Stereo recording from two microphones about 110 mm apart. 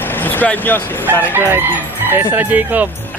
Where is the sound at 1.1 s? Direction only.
20° right (ahead or behind).